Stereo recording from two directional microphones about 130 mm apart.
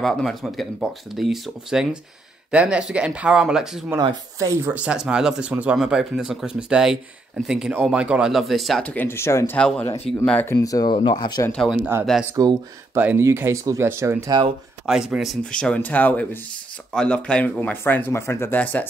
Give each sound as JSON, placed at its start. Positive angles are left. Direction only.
{"t": 0.0, "sound": "speech", "side_deg": 0}
{"t": 4.0, "sound": "speech", "side_deg": -35}
{"t": 4.5, "sound": "speech", "side_deg": -15}
{"t": 8.8, "sound": "speech", "side_deg": 15}
{"t": 9.6, "sound": "speech", "side_deg": 5}
{"t": 11.5, "sound": "speech", "side_deg": 0}
{"t": 12.4, "sound": "speech", "side_deg": -30}
{"t": 12.9, "sound": "speech", "side_deg": -15}
{"t": 14.9, "sound": "speech", "side_deg": -5}